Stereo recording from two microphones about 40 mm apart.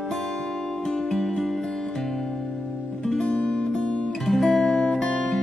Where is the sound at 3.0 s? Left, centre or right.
Centre.